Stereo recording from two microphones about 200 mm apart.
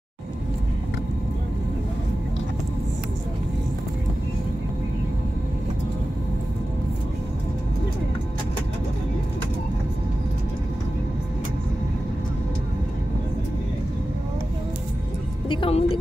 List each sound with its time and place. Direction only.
15.4 s music: 25° left (ahead or behind)